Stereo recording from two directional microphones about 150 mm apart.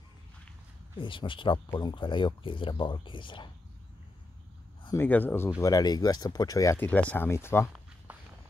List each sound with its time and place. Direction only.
0.9 s speech: 35° left (ahead or behind)
4.9 s speech: 15° left (ahead or behind)
5.6 s speech: 25° left (ahead or behind)
8.1 s walk: 10° right (ahead or behind)